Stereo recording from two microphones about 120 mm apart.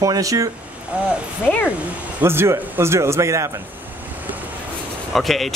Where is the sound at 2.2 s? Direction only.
20° right (ahead or behind).